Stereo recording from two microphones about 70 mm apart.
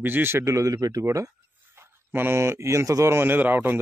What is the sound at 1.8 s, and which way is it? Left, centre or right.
Speech, right.